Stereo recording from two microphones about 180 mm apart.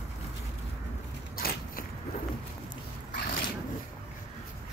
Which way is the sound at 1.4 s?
55° left (ahead or behind).